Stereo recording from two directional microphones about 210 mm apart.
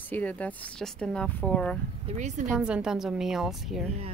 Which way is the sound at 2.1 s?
35° right (ahead or behind).